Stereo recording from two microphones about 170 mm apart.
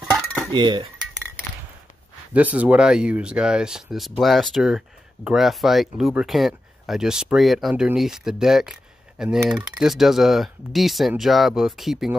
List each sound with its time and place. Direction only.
0.5 s dishes: 30° right (ahead or behind)
2.3 s speech: 10° right (ahead or behind)